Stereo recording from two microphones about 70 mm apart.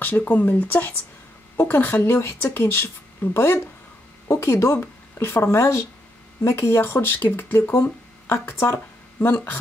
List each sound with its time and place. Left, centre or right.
0.0 s speech: left